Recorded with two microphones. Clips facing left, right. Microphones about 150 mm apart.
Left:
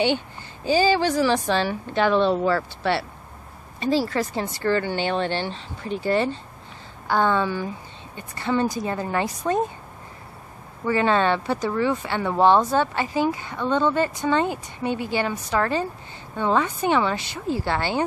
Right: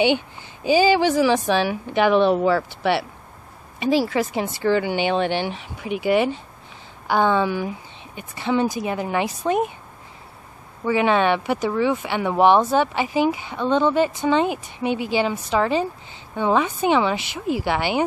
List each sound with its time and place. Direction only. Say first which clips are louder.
0.7 s speech: right 3 dB; 15° right (ahead or behind)
10.9 s speech: right 2 dB; 15° right (ahead or behind)